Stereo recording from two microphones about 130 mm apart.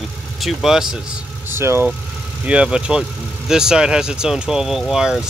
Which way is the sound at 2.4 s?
10° right (ahead or behind).